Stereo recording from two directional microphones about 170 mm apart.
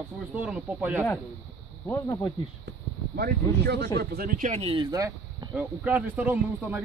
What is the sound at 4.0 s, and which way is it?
Speech, 65° right (ahead or behind).